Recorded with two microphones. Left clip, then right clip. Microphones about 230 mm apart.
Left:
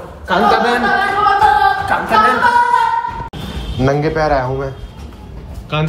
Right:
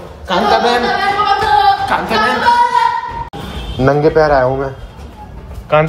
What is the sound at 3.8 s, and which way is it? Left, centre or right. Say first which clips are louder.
Speech: right 5 dB; right.